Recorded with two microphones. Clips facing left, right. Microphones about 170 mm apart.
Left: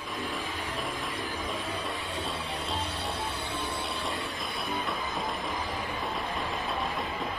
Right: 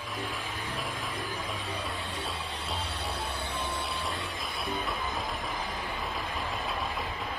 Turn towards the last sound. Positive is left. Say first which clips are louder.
# left 2 dB
turn(degrees=0)  # may be behind; listen again after turning